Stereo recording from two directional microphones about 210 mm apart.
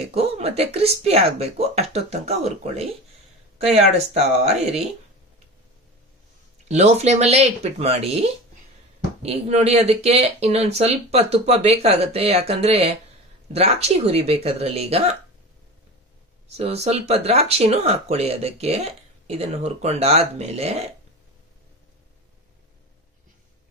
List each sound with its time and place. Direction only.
0.1 s speech: 30° right (ahead or behind)
6.7 s speech: 30° right (ahead or behind)
16.5 s speech: 30° right (ahead or behind)